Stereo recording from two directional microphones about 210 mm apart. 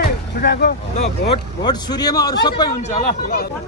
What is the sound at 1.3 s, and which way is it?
Speech, 20° left (ahead or behind).